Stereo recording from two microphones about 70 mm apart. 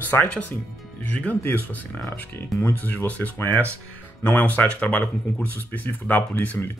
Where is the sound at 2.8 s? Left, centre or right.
Left.